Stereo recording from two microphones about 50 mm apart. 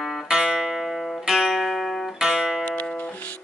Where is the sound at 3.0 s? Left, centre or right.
Left.